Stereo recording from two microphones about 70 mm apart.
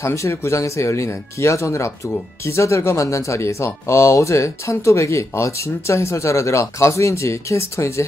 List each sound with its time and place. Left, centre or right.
0.0 s speech: left